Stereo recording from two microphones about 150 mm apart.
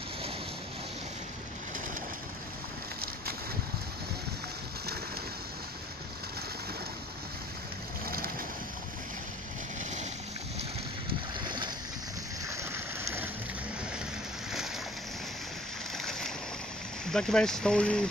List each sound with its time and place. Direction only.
8.1 s boat: 80° right
11.4 s boat: 30° right (ahead or behind)
12.4 s rain: 20° right (ahead or behind)
16.0 s boat: 5° left (ahead or behind)
17.0 s speech: 5° left (ahead or behind)